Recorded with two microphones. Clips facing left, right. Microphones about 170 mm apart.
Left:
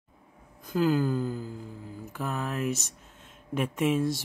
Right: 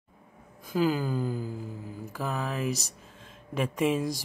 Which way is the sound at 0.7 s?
5° right (ahead or behind).